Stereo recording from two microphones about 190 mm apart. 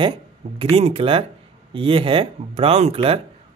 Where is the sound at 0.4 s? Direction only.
35° right (ahead or behind).